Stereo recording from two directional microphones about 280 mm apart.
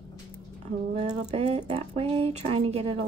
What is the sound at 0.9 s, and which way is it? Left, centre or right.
Speech, right.